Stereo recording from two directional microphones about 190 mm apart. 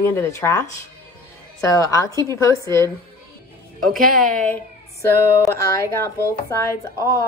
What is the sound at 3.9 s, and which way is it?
A woman's voice, 10° left (ahead or behind).